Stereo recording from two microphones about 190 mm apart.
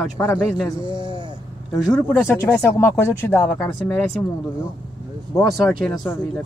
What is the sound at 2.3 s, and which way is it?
Speech, 15° left (ahead or behind).